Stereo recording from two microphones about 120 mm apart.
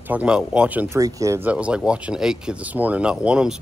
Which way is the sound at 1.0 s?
30° right (ahead or behind).